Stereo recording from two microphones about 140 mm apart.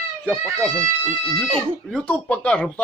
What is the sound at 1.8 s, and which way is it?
Speech, 5° left (ahead or behind).